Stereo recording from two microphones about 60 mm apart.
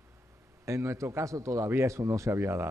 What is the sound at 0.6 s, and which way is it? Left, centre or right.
A man's voice, right.